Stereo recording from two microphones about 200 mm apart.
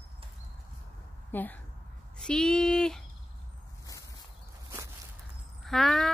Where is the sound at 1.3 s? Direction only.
10° left (ahead or behind).